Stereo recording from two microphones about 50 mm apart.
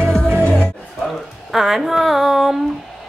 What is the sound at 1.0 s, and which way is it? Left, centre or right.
Speech, centre.